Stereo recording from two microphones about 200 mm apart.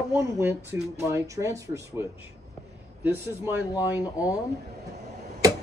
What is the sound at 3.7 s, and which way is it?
Speech, 15° left (ahead or behind).